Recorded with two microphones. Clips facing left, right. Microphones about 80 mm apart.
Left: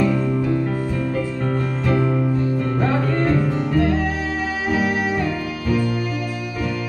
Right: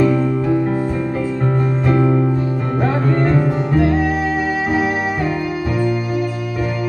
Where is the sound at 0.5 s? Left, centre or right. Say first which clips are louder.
Right 4 dB; right.